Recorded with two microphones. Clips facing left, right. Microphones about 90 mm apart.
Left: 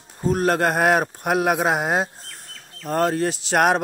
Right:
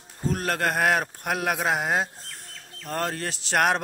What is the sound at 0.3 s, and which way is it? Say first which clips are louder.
A man's voice: left 7 dB; 20° left (ahead or behind).